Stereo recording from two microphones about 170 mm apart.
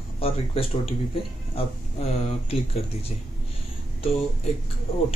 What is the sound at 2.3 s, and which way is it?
Speech, 35° left (ahead or behind).